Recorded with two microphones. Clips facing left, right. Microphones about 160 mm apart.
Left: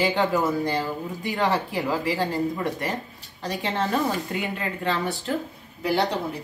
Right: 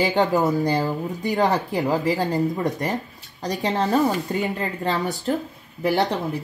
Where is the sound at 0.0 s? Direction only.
40° right (ahead or behind).